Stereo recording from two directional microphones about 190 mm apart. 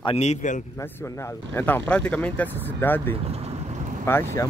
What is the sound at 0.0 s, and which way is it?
Speech, 35° left (ahead or behind).